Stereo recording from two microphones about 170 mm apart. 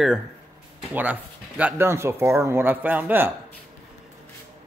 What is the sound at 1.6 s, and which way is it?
Speech, 15° right (ahead or behind).